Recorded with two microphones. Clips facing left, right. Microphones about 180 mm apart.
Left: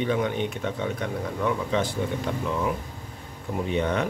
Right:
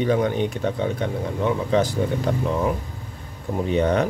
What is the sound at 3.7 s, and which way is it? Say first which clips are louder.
Speech: right 6 dB; 40° right (ahead or behind).